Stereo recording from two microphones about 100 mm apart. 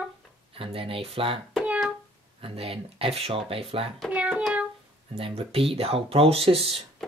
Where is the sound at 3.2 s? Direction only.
70° right (ahead or behind).